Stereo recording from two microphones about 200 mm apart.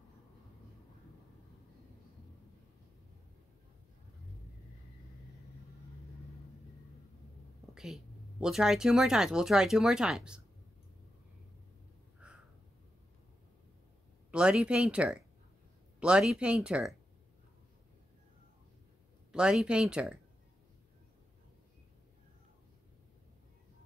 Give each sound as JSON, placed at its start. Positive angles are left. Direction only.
{"t": 7.7, "sound": "speech", "side_deg": 0}
{"t": 12.2, "sound": "a sound", "side_deg": -5}
{"t": 14.3, "sound": "speech", "side_deg": -5}
{"t": 19.3, "sound": "speech", "side_deg": -5}